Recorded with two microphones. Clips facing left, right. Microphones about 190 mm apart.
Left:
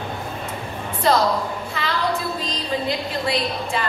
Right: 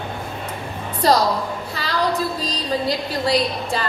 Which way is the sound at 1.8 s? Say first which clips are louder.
Left 2 dB; 35° right (ahead or behind).